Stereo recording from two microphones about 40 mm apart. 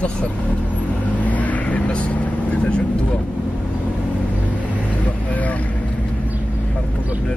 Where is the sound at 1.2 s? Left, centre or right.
Left.